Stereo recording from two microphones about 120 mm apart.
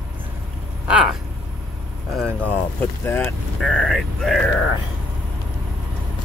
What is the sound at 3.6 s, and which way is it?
Speech, 5° left (ahead or behind).